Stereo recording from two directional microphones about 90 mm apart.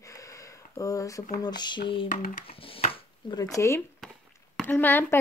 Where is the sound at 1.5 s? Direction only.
55° left (ahead or behind); by 3.0 s 90° left.